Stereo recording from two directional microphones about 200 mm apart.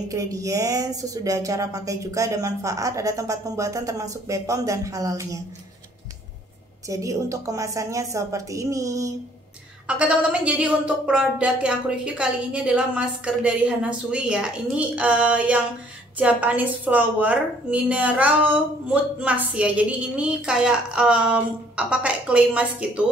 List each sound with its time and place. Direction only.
0.1 s a woman's voice: 15° right (ahead or behind)
6.9 s a woman's voice: 15° right (ahead or behind)
9.8 s a woman's voice: 5° right (ahead or behind)